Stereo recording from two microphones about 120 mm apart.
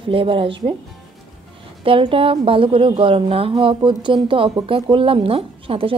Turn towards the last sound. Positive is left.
turn(degrees=-50)  # may be behind; listen again after turning